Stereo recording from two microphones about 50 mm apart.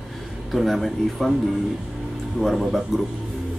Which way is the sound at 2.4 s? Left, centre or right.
Centre.